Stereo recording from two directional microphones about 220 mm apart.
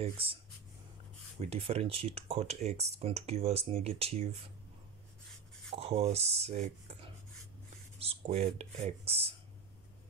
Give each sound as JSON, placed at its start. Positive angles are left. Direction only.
{"t": 0.0, "sound": "speech", "side_deg": -25}
{"t": 1.4, "sound": "speech", "side_deg": -25}
{"t": 5.8, "sound": "speech", "side_deg": -25}
{"t": 8.0, "sound": "speech", "side_deg": -30}